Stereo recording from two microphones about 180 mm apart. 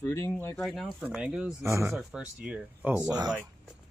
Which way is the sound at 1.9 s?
5° right (ahead or behind).